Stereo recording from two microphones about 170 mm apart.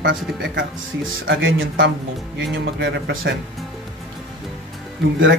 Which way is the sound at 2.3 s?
85° right.